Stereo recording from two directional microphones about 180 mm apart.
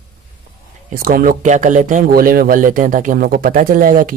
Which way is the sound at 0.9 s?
50° right (ahead or behind).